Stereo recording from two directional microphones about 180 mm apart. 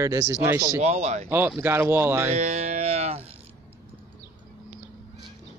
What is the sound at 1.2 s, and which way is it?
Speech, 10° right (ahead or behind).